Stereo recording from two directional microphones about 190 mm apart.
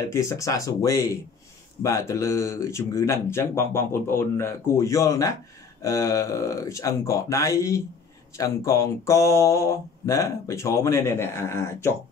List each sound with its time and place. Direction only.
0.1 s speech: 15° left (ahead or behind)